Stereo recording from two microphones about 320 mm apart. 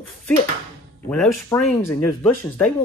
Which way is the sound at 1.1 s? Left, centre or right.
Centre.